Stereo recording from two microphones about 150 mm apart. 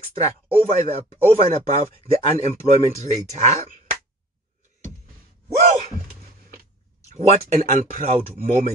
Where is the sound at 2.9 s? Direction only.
50° right (ahead or behind).